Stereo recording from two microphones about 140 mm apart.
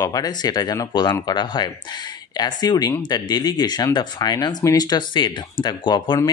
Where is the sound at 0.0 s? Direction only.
25° left (ahead or behind).